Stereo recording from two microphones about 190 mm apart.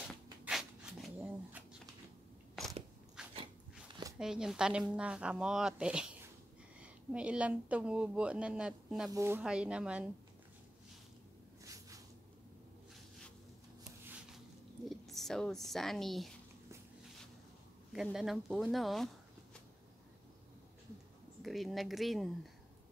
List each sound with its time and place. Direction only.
0.5 s a sound: centre (ahead or behind)
3.2 s dog: 5° right (ahead or behind)
4.2 s speech: 5° right (ahead or behind)
9.1 s speech: 15° right (ahead or behind)
11.6 s a sound: 15° right (ahead or behind)
14.9 s a woman's voice: centre (ahead or behind)
17.9 s speech: centre (ahead or behind)
21.4 s speech: centre (ahead or behind)